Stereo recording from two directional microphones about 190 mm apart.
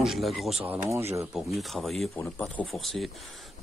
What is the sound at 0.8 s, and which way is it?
Speech, 15° right (ahead or behind).